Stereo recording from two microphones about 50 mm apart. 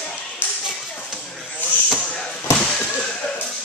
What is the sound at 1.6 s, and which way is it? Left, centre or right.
Basketball bounce, left.